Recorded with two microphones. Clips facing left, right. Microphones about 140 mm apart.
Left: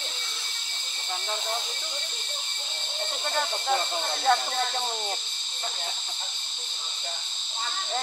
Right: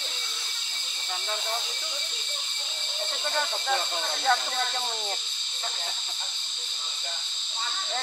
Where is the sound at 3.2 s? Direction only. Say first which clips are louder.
Left 1 dB; 25° left (ahead or behind).